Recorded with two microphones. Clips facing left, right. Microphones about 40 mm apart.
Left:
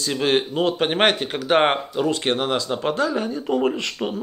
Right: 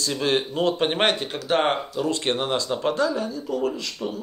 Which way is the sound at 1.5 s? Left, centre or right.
Left.